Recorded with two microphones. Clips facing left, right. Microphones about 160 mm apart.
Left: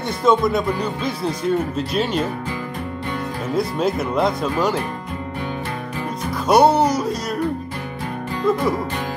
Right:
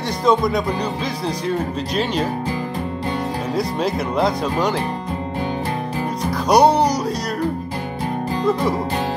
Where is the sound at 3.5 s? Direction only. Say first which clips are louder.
Left 2 dB; centre (ahead or behind).